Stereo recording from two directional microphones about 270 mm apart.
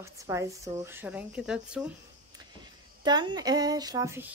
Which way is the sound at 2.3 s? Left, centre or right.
Centre.